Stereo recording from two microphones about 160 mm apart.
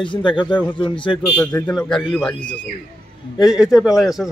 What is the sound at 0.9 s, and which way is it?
Speech, 30° left (ahead or behind).